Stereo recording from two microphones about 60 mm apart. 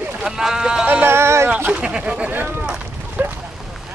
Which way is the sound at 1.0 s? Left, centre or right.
Right.